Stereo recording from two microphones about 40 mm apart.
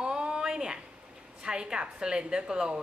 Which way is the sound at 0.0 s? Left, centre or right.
Right.